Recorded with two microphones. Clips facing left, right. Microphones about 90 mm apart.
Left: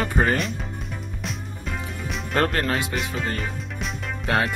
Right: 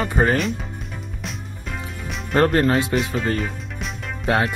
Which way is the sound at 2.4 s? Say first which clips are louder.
Right 6 dB; 25° right (ahead or behind).